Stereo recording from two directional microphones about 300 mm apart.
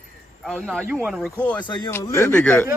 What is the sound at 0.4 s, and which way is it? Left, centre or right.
A man's voice, centre.